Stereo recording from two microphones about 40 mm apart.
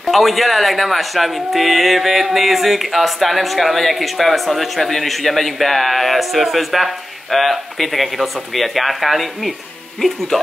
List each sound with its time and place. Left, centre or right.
0.0 s speech: centre